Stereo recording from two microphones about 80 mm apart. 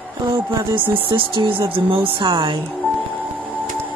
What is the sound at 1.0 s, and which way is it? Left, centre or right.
A woman's voice, right.